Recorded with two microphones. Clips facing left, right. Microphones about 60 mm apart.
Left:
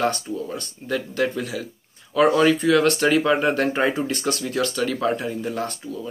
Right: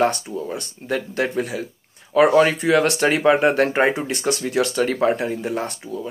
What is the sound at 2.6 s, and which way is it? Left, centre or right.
Speech, right.